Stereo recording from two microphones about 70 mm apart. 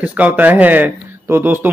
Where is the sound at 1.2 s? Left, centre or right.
Right.